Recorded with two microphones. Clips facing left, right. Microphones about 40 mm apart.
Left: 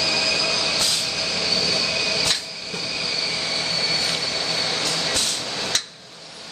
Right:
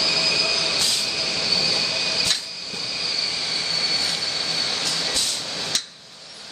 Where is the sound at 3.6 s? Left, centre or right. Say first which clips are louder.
Even; centre.